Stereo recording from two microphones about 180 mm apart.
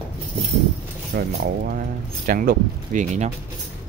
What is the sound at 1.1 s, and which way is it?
Speech, 60° right (ahead or behind).